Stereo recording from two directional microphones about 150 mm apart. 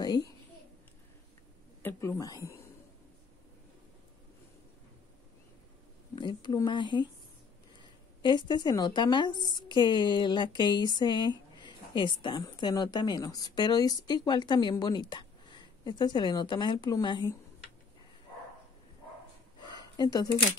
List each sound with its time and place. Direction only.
1.8 s speech: 15° left (ahead or behind)
6.1 s a woman's voice: 30° left (ahead or behind)
19.6 s a sound: 25° left (ahead or behind)